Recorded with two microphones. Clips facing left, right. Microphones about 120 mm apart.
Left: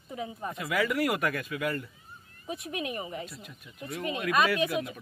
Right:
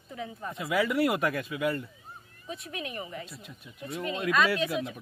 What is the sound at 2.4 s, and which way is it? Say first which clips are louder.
Speech: left 3 dB; 15° left (ahead or behind).